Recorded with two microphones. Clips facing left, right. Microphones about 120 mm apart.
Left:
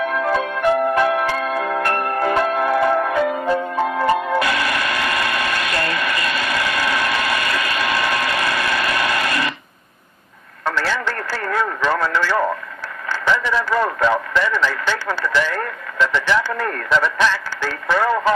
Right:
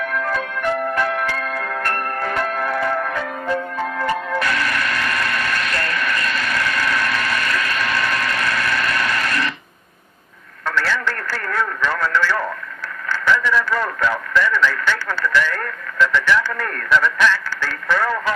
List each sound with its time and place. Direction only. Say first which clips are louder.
0.0 s music: left 4 dB; 15° left (ahead or behind)
10.6 s radio: even; 20° left (ahead or behind)
13.6 s speech: left 2 dB; 20° left (ahead or behind)